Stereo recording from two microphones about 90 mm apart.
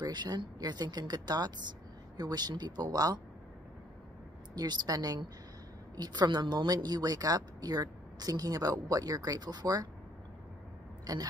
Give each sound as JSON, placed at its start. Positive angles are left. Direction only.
{"t": 0.0, "sound": "a woman's voice", "side_deg": -50}
{"t": 4.6, "sound": "a woman's voice", "side_deg": -45}